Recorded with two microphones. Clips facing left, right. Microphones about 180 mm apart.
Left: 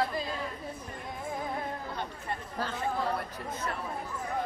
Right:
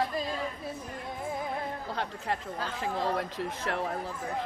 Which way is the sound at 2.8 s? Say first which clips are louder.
Right 2 dB; 90° right.